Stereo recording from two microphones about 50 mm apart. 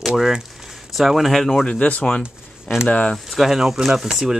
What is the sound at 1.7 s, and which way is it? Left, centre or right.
Speech, left.